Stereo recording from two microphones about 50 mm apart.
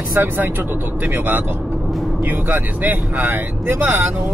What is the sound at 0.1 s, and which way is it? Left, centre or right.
Speech, right.